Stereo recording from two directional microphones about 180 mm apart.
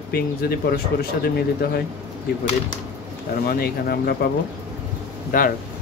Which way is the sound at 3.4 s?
60° left (ahead or behind).